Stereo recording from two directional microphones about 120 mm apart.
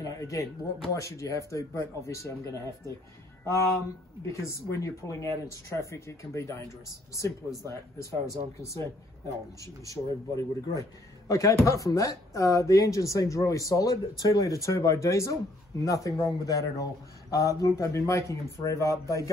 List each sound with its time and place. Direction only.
0.0 s music: 30° left (ahead or behind)
0.9 s speech: 25° left (ahead or behind)
4.2 s speech: 25° left (ahead or behind)